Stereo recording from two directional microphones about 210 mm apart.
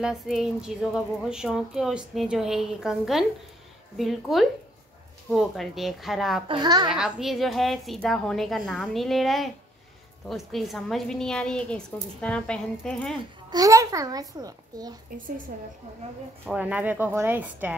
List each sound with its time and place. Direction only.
0.0 s a woman's voice: centre (ahead or behind)
6.4 s a child's voice: 20° right (ahead or behind)
6.9 s a woman's voice: 5° right (ahead or behind)
13.5 s a child's voice: 15° right (ahead or behind)
15.1 s a woman's voice: 40° right (ahead or behind)
16.4 s a child's voice: 5° right (ahead or behind)